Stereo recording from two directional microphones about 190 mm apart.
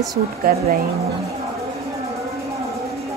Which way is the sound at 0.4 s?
50° right (ahead or behind).